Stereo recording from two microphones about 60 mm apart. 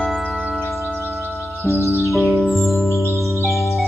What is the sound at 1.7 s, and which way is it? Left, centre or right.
Music, right.